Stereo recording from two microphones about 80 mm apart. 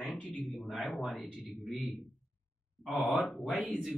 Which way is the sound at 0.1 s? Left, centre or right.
Centre.